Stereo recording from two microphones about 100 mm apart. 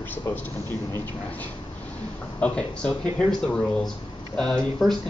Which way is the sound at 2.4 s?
10° left (ahead or behind).